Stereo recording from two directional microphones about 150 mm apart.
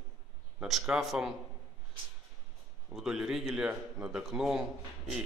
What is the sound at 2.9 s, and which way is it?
Speech, 5° right (ahead or behind).